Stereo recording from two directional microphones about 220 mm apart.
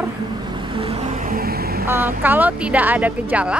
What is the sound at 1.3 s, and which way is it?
Vehicle, 45° right (ahead or behind).